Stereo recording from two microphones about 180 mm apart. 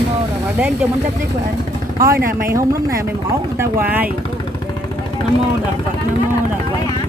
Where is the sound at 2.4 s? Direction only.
15° right (ahead or behind).